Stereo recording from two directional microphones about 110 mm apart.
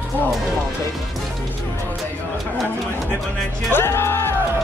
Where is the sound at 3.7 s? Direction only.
20° left (ahead or behind).